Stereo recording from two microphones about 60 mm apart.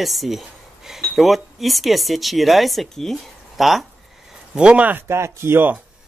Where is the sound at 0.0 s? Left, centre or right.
Centre.